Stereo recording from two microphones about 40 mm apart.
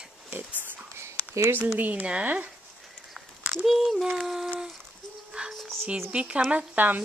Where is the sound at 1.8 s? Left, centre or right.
Right.